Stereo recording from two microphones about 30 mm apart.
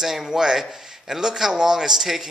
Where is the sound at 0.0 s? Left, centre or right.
Centre.